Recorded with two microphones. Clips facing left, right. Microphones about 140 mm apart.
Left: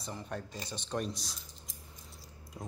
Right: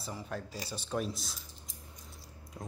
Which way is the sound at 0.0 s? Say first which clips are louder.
Even; 5° right (ahead or behind).